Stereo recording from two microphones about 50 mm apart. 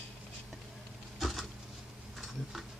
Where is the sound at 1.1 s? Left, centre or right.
Centre.